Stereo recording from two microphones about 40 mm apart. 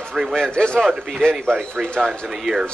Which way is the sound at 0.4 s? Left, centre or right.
Left.